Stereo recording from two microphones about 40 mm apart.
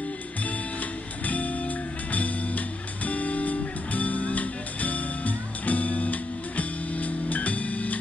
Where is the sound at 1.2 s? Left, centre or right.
Left.